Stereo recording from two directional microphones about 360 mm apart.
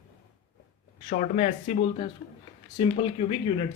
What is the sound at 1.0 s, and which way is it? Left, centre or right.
Speech, left.